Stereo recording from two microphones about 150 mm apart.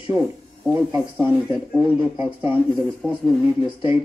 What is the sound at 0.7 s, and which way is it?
Speech, 20° right (ahead or behind).